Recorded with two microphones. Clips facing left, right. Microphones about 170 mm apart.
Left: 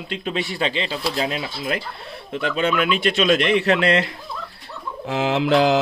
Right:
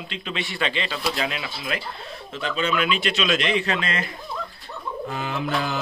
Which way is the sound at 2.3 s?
55° left (ahead or behind).